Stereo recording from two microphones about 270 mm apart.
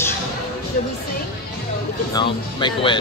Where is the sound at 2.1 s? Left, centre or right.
Centre.